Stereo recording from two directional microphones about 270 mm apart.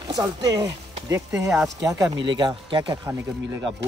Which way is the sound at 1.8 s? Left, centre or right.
Centre.